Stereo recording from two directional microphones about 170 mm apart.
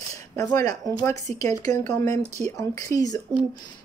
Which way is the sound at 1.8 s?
45° right (ahead or behind).